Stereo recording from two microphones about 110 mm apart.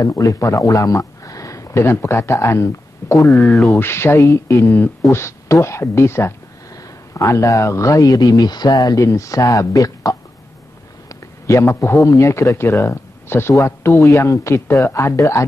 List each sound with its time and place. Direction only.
0.0 s speech: 35° left (ahead or behind)
3.2 s speech: centre (ahead or behind)
3.7 s a man's voice: 20° left (ahead or behind)